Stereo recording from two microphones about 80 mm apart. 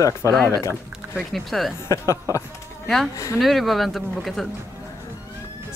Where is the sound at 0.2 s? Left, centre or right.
Left.